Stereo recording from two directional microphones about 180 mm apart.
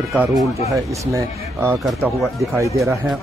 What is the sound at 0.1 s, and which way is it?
Speech, 5° right (ahead or behind).